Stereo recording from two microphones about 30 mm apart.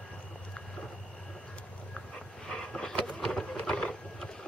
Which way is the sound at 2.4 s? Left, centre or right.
Left.